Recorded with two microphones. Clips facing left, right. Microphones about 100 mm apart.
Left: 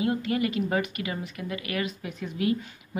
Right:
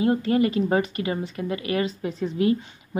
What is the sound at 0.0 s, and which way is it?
A woman's voice, 30° right (ahead or behind).